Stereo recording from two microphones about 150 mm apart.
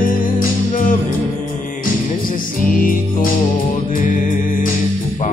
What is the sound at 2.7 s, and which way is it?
Music, 65° left (ahead or behind).